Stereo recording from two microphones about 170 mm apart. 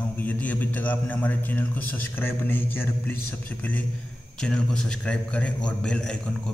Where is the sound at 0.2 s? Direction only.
10° left (ahead or behind).